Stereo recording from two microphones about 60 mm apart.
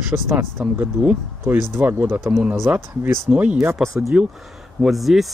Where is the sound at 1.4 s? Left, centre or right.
Right.